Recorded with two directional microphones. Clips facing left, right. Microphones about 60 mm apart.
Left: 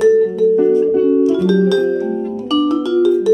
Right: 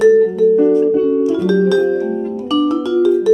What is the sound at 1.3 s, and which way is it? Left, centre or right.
Music, right.